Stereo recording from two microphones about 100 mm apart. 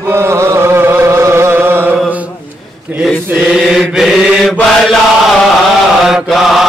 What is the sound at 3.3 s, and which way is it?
Mantra, 5° right (ahead or behind).